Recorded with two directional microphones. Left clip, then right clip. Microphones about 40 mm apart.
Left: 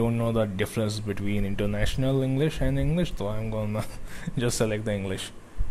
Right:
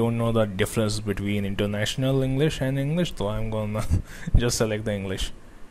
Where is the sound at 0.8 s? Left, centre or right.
Right.